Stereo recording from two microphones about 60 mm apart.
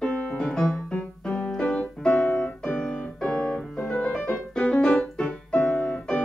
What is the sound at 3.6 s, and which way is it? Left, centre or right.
Piano, centre.